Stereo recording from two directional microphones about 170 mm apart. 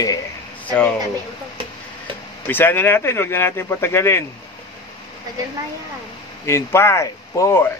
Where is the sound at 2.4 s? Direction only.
10° left (ahead or behind).